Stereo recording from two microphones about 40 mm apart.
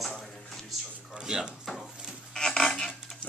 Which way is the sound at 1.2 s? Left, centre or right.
Centre.